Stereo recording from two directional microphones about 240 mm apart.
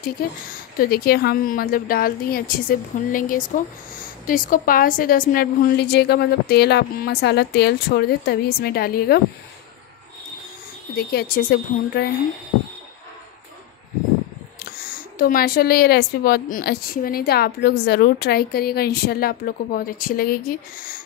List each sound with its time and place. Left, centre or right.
0.7 s a woman's voice: left
11.0 s a woman's voice: left
15.1 s a woman's voice: left